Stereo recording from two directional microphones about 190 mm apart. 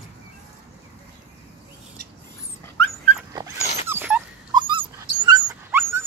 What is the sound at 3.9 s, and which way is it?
Dog, 10° right (ahead or behind).